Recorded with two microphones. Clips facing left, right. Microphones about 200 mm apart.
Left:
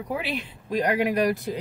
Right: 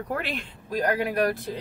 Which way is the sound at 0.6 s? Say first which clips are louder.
Left 2 dB; 20° left (ahead or behind).